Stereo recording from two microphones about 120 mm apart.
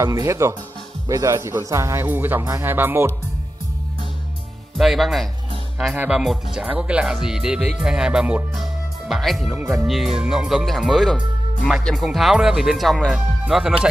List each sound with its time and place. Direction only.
0.0 s speech: 25° right (ahead or behind)
4.7 s speech: centre (ahead or behind)
9.5 s speech: 15° right (ahead or behind)
9.8 s speech: 5° right (ahead or behind)